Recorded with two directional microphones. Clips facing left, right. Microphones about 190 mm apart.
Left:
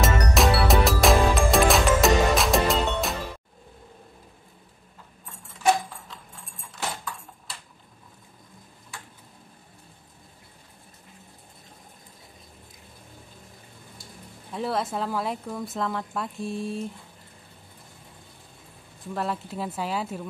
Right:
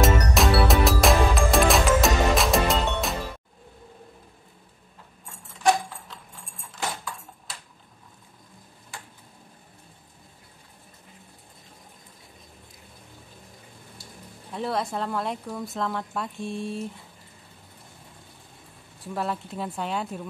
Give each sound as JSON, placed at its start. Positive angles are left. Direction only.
{"t": 0.0, "sound": "music", "side_deg": 0}
{"t": 5.6, "sound": "clip-clop", "side_deg": 0}
{"t": 14.5, "sound": "a woman's voice", "side_deg": 0}
{"t": 19.1, "sound": "a woman's voice", "side_deg": 0}